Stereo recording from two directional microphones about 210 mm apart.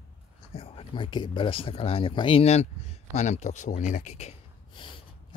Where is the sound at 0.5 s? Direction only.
25° left (ahead or behind).